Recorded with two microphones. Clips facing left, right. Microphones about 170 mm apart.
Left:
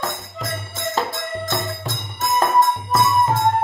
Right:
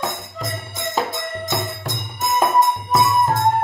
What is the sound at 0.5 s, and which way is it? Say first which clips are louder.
Music: left 2 dB; 20° right (ahead or behind).